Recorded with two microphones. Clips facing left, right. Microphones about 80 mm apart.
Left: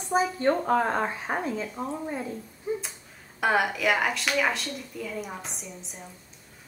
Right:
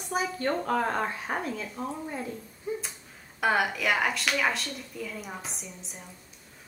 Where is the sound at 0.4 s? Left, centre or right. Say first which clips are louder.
Left 2 dB; centre.